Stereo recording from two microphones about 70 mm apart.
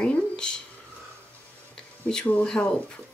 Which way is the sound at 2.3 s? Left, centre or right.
Centre.